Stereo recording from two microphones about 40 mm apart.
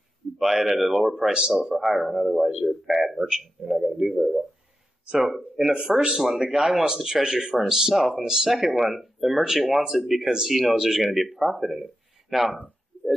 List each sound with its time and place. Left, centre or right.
0.4 s speech: centre
1.3 s speech: centre
1.8 s a man's voice: centre
8.5 s a man's voice: centre